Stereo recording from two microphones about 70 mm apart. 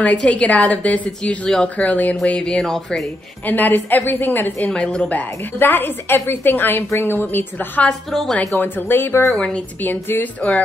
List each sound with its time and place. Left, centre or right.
0.0 s a woman's voice: centre
3.4 s a woman's voice: left
4.6 s speech: centre
5.6 s a woman's voice: left
8.1 s speech: centre
8.5 s a woman's voice: left